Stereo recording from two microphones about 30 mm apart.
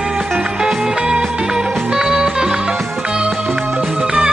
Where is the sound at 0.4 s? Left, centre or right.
Right.